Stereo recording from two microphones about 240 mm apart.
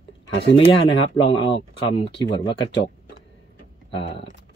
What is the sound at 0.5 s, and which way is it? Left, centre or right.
Speech, left.